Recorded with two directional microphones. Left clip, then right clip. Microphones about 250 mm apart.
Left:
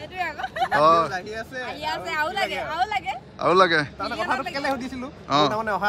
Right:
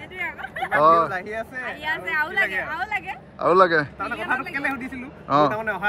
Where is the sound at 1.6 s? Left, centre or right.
Centre.